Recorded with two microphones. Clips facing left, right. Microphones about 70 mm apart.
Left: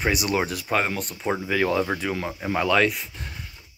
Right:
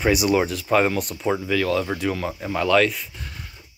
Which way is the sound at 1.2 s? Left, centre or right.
Centre.